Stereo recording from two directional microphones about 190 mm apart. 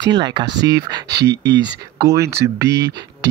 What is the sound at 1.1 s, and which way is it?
Speech, 60° right (ahead or behind).